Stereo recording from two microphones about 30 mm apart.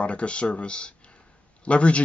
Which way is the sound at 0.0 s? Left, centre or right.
Left.